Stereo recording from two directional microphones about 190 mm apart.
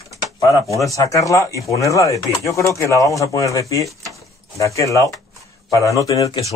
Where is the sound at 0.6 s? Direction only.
Centre (ahead or behind).